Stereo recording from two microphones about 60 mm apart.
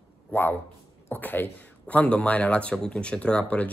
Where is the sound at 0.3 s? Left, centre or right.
Left.